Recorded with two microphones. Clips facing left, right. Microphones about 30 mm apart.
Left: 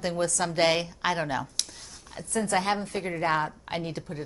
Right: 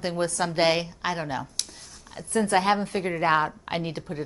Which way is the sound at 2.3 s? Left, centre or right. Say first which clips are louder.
Right 4 dB; right.